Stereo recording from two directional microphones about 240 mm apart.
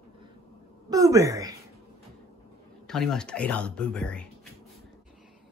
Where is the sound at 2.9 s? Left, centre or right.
Centre.